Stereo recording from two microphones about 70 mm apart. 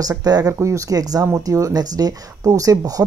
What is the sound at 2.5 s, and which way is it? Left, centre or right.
Speech, right.